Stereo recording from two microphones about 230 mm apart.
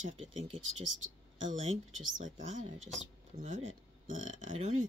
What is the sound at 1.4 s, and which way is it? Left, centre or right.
Speech, right.